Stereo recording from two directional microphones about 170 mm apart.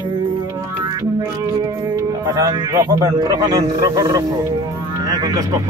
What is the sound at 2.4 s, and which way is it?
A man's voice, 20° right (ahead or behind).